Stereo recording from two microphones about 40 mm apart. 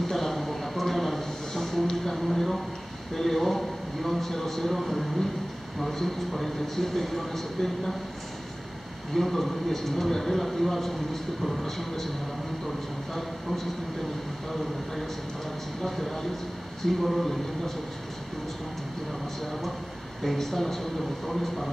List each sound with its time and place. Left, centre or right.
0.0 s a sound: centre
5.8 s speech: centre
9.1 s a man's voice: centre
15.8 s speech: centre
20.2 s speech: centre